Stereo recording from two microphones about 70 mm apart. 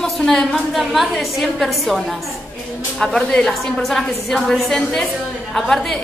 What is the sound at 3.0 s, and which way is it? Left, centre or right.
A woman's voice, centre.